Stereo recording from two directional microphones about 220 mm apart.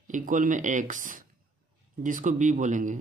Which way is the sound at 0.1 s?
35° right (ahead or behind).